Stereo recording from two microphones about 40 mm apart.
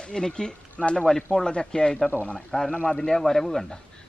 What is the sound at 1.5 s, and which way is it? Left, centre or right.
Speech, left.